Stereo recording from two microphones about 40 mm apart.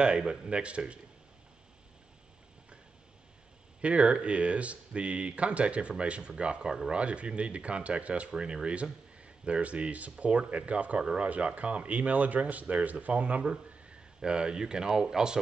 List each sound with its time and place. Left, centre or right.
0.0 s speech: right
3.8 s speech: right
7.0 s speech: right
11.0 s speech: right
11.2 s speech: right
14.2 s speech: right